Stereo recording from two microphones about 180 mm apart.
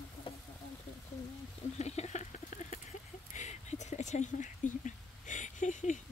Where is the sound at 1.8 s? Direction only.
35° left (ahead or behind).